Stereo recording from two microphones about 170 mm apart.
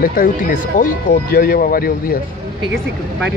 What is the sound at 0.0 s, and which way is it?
Speech, 60° left (ahead or behind).